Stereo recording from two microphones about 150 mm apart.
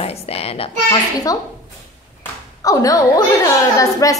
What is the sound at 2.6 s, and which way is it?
A woman's voice, 25° left (ahead or behind).